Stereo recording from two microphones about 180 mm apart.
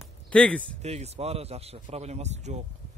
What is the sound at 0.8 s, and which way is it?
A man's voice, 35° right (ahead or behind).